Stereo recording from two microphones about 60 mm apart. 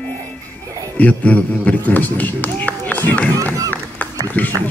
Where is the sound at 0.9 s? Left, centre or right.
Left.